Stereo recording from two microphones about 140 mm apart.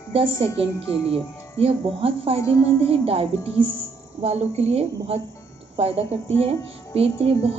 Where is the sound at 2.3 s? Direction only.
20° left (ahead or behind).